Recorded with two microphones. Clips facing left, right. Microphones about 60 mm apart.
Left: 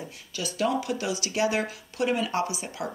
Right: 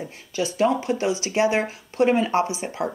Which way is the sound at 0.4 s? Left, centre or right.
Right.